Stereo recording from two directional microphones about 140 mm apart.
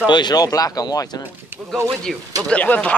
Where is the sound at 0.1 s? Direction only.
30° left (ahead or behind).